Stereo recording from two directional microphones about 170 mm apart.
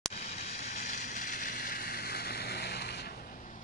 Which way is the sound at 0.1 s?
40° left (ahead or behind).